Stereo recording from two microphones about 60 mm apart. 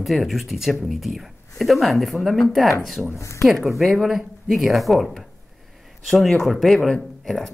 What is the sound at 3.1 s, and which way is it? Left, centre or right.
Speech, left.